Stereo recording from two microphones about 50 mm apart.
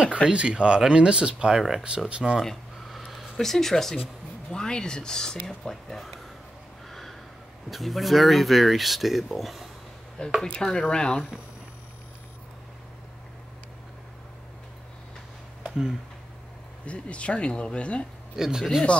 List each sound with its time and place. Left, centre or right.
0.0 s speech: centre
2.4 s a sound: centre
3.3 s speech: centre
6.9 s a sound: centre
7.7 s speech: centre
10.4 s speech: centre
16.8 s speech: left
18.3 s speech: centre